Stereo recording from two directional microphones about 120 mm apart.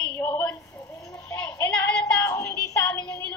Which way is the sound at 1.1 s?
15° left (ahead or behind).